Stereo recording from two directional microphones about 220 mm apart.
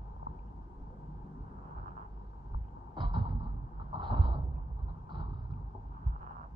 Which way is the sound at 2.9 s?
20° right (ahead or behind).